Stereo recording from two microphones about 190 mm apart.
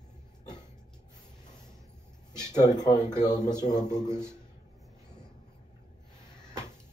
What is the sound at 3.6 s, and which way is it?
Speech, 40° left (ahead or behind).